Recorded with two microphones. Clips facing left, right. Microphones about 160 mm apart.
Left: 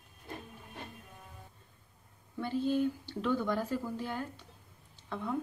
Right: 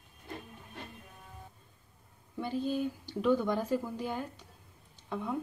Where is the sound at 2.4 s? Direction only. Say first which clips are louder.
Left 2 dB; 15° right (ahead or behind).